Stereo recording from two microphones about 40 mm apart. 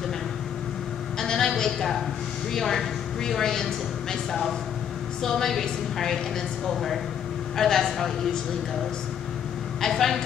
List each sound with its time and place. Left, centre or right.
1.2 s a sound: centre
1.6 s a woman's voice: centre
7.5 s a woman's voice: centre
9.8 s a woman's voice: centre